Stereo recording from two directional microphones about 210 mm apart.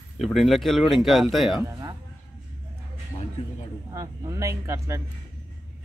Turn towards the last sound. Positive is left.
turn(degrees=-15)  # may be behind; listen again after turning